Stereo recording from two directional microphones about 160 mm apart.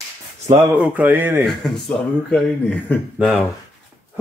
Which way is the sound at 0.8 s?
10° right (ahead or behind).